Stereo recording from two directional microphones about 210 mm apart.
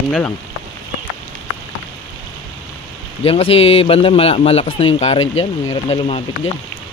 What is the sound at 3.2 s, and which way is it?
Speech, 25° left (ahead or behind).